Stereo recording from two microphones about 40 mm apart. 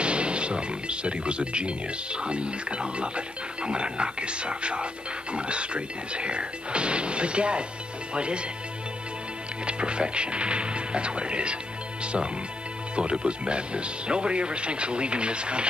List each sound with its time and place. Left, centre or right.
0.0 s speech: right
9.7 s speech: right